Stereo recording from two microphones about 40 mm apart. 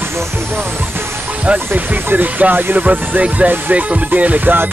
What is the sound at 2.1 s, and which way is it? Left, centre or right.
Music, right.